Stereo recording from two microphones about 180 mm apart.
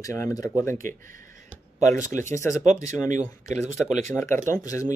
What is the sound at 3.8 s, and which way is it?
Speech, 5° left (ahead or behind).